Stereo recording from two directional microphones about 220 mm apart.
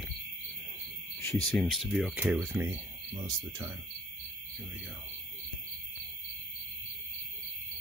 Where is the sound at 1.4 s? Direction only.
Centre (ahead or behind); by 3.7 s 15° right (ahead or behind).